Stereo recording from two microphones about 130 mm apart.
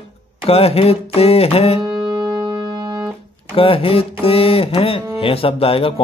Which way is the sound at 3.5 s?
45° left (ahead or behind).